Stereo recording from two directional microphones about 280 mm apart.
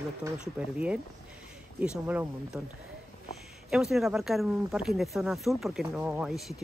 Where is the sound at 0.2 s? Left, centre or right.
Centre.